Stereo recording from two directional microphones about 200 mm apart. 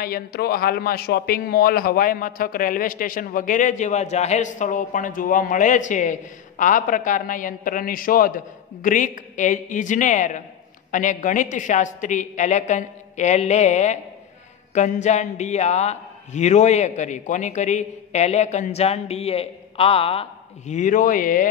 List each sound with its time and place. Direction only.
0.0 s a man's voice: 50° left (ahead or behind)